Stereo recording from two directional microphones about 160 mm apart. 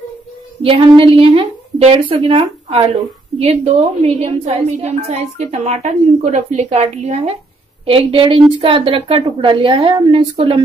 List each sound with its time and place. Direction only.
0.6 s a woman's voice: 35° right (ahead or behind)